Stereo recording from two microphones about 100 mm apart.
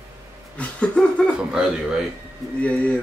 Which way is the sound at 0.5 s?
15° left (ahead or behind).